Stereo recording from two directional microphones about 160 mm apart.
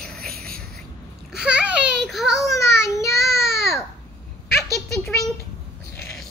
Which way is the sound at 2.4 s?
20° left (ahead or behind).